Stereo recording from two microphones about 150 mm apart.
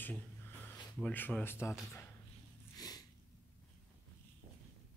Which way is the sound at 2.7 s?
25° left (ahead or behind).